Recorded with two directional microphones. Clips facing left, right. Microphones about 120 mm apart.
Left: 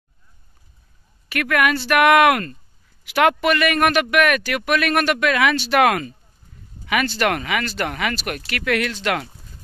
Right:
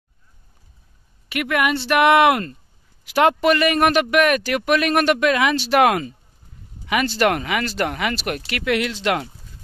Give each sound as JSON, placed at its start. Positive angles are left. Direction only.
{"t": 1.3, "sound": "a man's voice", "side_deg": -20}